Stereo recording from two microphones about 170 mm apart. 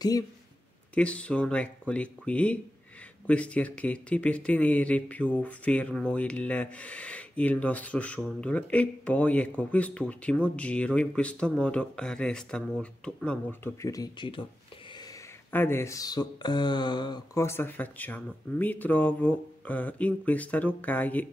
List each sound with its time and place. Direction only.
0.9 s speech: 5° left (ahead or behind); by 14.4 s 30° left (ahead or behind)
15.5 s speech: 15° left (ahead or behind)